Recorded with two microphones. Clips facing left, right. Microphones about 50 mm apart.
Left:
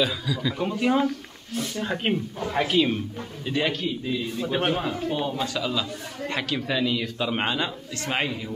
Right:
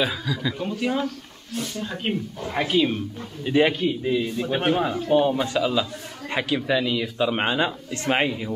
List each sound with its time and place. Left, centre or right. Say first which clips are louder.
0.0 s speech: even; centre
0.6 s speech: left 5 dB; centre
1.8 s speech: left 3 dB; left
2.4 s speech: right 1 dB; centre
3.4 s a man's voice: right 6 dB; centre
4.4 s a man's voice: right 3 dB; centre
5.6 s a man's voice: right 4 dB; centre